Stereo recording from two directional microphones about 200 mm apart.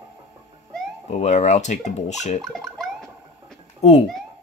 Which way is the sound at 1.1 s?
35° left (ahead or behind).